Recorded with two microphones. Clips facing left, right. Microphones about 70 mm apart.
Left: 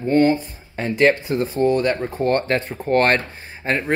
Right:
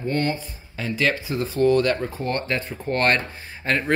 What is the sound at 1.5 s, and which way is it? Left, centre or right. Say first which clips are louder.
Speech: right 1 dB; left.